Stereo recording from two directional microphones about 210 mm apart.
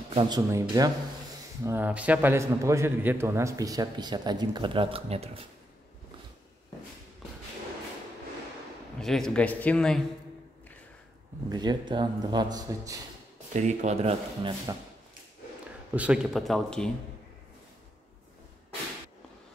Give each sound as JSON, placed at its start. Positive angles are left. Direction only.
{"t": 0.1, "sound": "a man's voice", "side_deg": -25}
{"t": 7.2, "sound": "a sound", "side_deg": 0}
{"t": 9.0, "sound": "speech", "side_deg": 0}
{"t": 11.4, "sound": "a man's voice", "side_deg": -20}
{"t": 13.5, "sound": "speech", "side_deg": -35}
{"t": 15.9, "sound": "speech", "side_deg": -5}